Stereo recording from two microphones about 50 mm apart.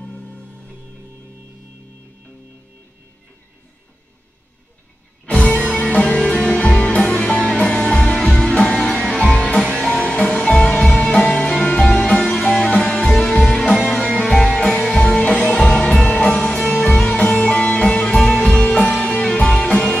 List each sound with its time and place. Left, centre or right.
0.2 s music: left
5.2 s music: left
6.6 s music: left
15.5 s music: centre
18.5 s music: left